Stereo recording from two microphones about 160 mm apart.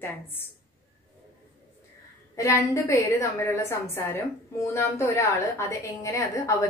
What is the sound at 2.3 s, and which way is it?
A woman's voice, 20° left (ahead or behind).